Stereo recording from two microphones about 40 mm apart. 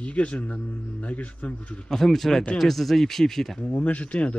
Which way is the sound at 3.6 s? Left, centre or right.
Left.